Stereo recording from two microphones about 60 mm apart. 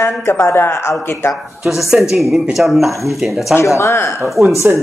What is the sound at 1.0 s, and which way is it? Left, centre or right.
Music, left.